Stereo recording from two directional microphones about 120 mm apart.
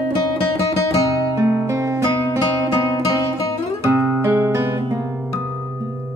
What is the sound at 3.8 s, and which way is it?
Guitar, 25° right (ahead or behind).